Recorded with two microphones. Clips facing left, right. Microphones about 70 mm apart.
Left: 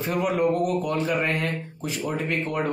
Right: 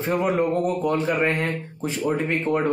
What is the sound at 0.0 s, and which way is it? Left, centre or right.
Speech, right.